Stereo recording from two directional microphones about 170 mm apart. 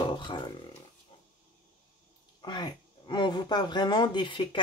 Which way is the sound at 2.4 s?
25° left (ahead or behind).